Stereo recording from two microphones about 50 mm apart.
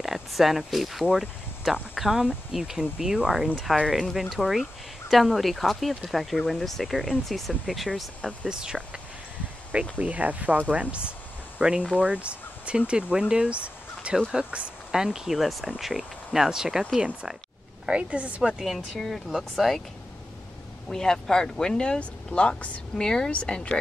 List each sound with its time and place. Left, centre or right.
0.0 s speech: centre
1.0 s speech: centre
3.8 s speech: centre
8.5 s speech: centre
9.9 s a woman's voice: right
14.9 s speech: centre
17.8 s a woman's voice: right
18.6 s speech: centre
20.9 s speech: centre